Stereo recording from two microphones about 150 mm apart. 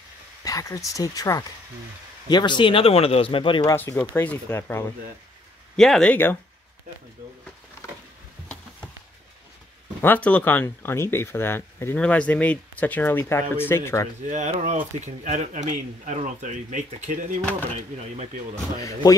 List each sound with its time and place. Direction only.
0.4 s speech: 25° left (ahead or behind)
3.7 s speech: 15° left (ahead or behind)
5.8 s speech: 5° left (ahead or behind)
10.0 s speech: 10° left (ahead or behind)
14.2 s speech: 55° right (ahead or behind)
17.4 s speech: 10° left (ahead or behind)
17.6 s speech: 50° right (ahead or behind)